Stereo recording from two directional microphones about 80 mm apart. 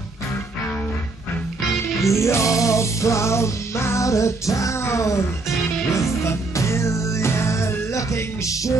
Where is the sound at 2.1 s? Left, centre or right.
Left.